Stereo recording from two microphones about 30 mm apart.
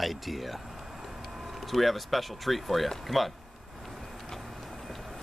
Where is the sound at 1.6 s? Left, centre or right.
Centre.